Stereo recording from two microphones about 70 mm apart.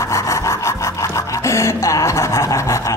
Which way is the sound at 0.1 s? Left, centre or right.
Left.